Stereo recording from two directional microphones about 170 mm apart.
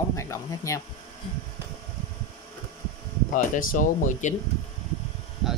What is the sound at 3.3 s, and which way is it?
Speech, 55° left (ahead or behind).